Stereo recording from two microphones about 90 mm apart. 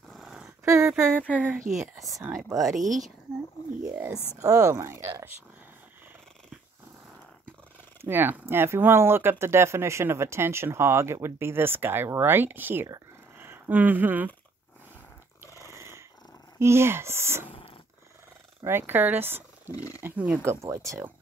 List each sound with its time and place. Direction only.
0.1 s dog: 5° right (ahead or behind)
0.7 s speech: 30° right (ahead or behind)
1.0 s speech: 15° left (ahead or behind)
1.7 s speech: centre (ahead or behind)
4.4 s speech: 35° right (ahead or behind)
8.0 s speech: 20° right (ahead or behind)
15.6 s dog: 30° right (ahead or behind)
16.5 s speech: 30° right (ahead or behind)
17.5 s dog: 85° left
18.6 s speech: 25° right (ahead or behind)
19.7 s speech: 40° left (ahead or behind)
20.0 s speech: 20° right (ahead or behind)
20.4 s speech: 30° right (ahead or behind)